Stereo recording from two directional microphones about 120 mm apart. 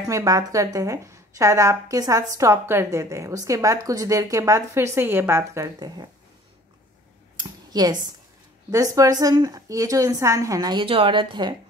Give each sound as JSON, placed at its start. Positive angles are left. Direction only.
{"t": 0.1, "sound": "a woman's voice", "side_deg": -30}
{"t": 7.3, "sound": "a sound", "side_deg": -35}
{"t": 8.7, "sound": "a woman's voice", "side_deg": -30}